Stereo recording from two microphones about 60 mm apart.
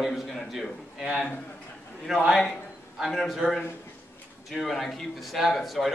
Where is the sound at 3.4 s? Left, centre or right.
Centre.